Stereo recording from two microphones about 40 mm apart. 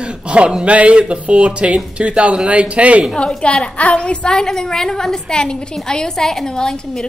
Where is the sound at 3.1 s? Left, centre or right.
Left.